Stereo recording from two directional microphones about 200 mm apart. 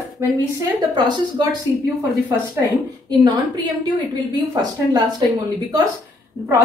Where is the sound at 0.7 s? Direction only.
20° right (ahead or behind).